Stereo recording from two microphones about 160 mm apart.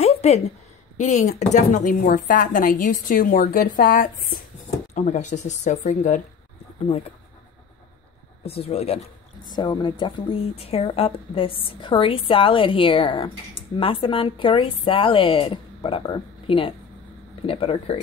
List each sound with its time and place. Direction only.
0.0 s a sound: 40° left (ahead or behind)
0.9 s a woman's voice: 50° left (ahead or behind)
4.9 s speech: 50° left (ahead or behind)
8.5 s a woman's voice: 40° left (ahead or behind)
9.5 s a woman's voice: 30° left (ahead or behind)